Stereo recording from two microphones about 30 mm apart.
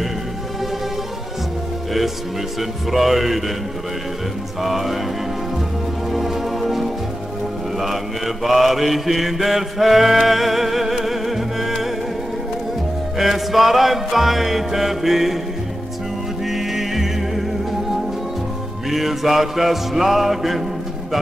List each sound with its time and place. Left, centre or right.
2.9 s music: centre
4.6 s music: centre
6.1 s music: centre
8.5 s mantra: centre
13.2 s music: centre
16.4 s music: centre
18.9 s music: centre